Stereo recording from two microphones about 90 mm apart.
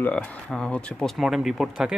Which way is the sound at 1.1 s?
5° right (ahead or behind).